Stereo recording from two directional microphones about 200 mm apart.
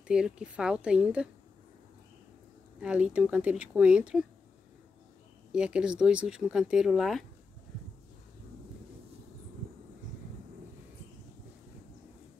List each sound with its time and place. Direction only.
0.1 s speech: 5° right (ahead or behind)
2.8 s speech: 5° right (ahead or behind)
5.5 s speech: 5° right (ahead or behind)